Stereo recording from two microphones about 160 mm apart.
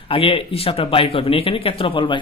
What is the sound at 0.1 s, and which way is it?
Speech, 35° left (ahead or behind).